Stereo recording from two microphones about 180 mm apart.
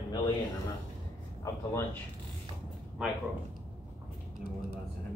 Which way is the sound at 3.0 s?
5° right (ahead or behind).